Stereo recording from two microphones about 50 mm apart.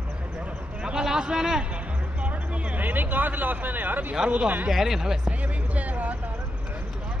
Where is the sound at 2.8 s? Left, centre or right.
Right.